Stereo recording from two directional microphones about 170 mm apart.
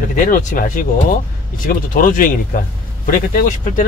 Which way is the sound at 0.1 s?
50° left (ahead or behind).